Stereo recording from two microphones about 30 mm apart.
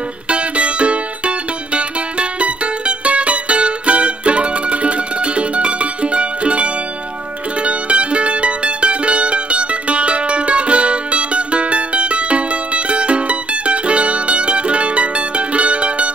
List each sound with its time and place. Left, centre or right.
0.3 s music: right